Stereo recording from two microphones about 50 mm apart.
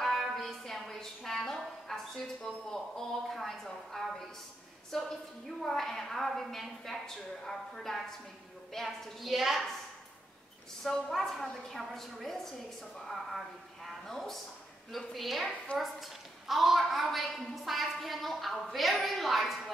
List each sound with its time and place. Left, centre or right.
0.0 s music: centre
1.9 s a woman's voice: centre
10.8 s a woman's voice: centre
15.4 s a woman's voice: centre
15.8 s a woman's voice: centre